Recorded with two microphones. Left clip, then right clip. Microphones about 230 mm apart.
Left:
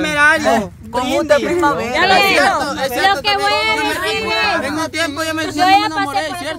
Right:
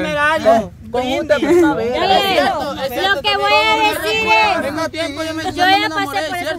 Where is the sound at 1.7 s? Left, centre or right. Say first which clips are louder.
Left 1 dB; left.